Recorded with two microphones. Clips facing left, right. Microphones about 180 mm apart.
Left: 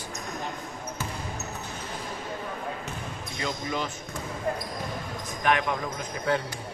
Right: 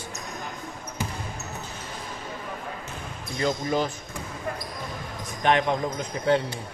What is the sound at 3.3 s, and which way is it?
Speech, 40° right (ahead or behind).